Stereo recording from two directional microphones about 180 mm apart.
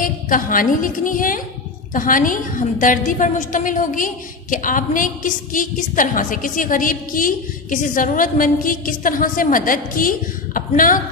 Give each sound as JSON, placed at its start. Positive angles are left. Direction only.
{"t": 0.0, "sound": "a woman's voice", "side_deg": 50}